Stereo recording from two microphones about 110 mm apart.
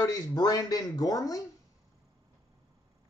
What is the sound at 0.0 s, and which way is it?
Speech, 35° left (ahead or behind).